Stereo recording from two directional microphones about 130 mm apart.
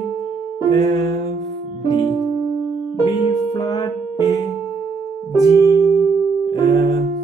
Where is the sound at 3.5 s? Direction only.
25° left (ahead or behind).